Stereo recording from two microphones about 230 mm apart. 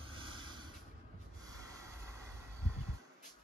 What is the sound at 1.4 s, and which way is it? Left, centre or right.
Snort, centre.